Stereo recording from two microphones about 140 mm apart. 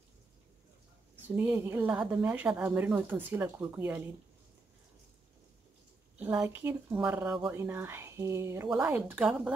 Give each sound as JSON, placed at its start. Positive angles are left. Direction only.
{"t": 1.3, "sound": "speech", "side_deg": -10}
{"t": 6.1, "sound": "a woman's voice", "side_deg": -10}